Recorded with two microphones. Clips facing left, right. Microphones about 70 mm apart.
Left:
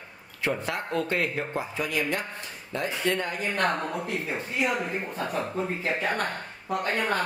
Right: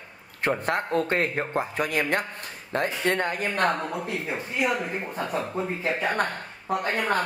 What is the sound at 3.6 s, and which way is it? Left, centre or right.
Speech, centre.